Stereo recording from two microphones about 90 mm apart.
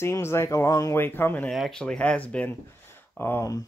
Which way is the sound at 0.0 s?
30° left (ahead or behind).